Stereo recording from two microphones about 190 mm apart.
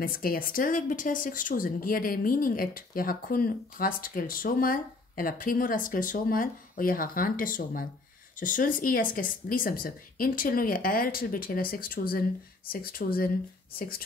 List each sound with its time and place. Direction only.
0.0 s a woman's voice: 50° left (ahead or behind)